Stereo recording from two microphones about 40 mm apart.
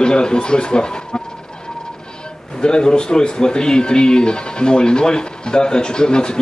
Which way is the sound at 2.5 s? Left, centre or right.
Left.